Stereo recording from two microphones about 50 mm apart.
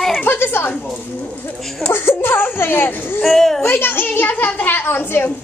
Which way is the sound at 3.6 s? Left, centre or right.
Left.